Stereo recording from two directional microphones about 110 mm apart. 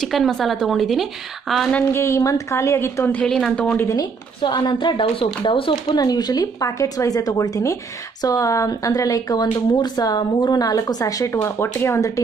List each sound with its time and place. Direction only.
0.0 s speech: centre (ahead or behind)
1.7 s a woman's voice: 15° left (ahead or behind)
2.0 s a woman's voice: 25° left (ahead or behind)
3.2 s a woman's voice: 5° left (ahead or behind)
3.9 s a woman's voice: 40° left (ahead or behind)
5.9 s a woman's voice: 35° left (ahead or behind)
11.3 s a woman's voice: 20° left (ahead or behind)